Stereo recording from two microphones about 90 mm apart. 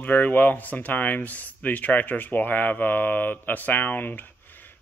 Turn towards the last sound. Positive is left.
turn(degrees=20)  # may be behind; listen again after turning